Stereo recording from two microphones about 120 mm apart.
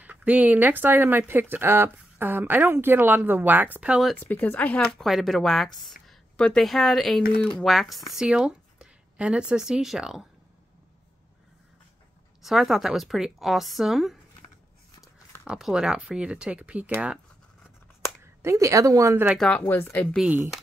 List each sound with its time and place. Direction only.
0.0 s speech: 15° right (ahead or behind)
4.2 s speech: 15° left (ahead or behind)
4.9 s a woman's voice: centre (ahead or behind)
12.4 s a woman's voice: 5° right (ahead or behind)
15.4 s speech: 5° right (ahead or behind)
18.2 s a woman's voice: 20° right (ahead or behind)
19.3 s speech: 10° left (ahead or behind)